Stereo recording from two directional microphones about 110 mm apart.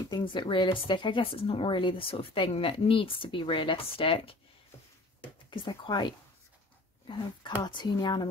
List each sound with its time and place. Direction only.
0.0 s speech: 45° left (ahead or behind)
5.5 s speech: 45° left (ahead or behind)
7.6 s speech: 40° left (ahead or behind)